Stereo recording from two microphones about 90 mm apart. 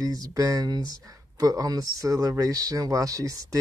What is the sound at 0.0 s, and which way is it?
Speech, 45° right (ahead or behind).